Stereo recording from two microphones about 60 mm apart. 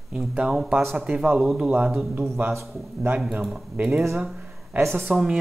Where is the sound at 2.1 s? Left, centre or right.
Right.